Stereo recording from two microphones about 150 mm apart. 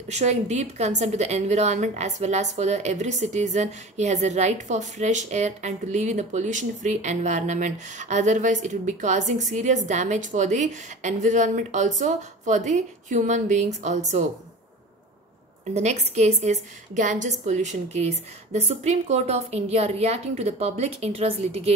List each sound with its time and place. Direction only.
0.1 s a woman's voice: 50° right (ahead or behind)
15.7 s a woman's voice: 45° right (ahead or behind)